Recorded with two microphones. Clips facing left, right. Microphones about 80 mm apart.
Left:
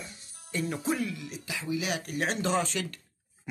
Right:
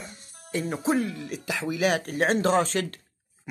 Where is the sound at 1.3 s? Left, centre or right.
Right.